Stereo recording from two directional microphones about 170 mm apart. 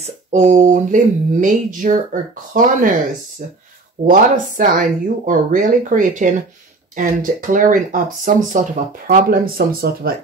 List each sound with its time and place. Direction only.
0.0 s speech: 45° right (ahead or behind)
4.0 s speech: 50° right (ahead or behind)
9.0 s speech: 60° right (ahead or behind)